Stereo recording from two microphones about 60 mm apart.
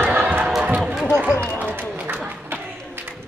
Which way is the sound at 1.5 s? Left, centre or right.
Right.